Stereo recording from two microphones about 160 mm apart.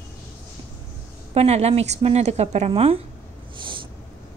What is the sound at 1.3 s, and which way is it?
A woman's voice, 40° right (ahead or behind).